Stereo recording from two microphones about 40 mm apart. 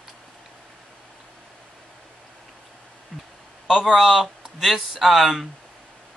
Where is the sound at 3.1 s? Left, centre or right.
Centre.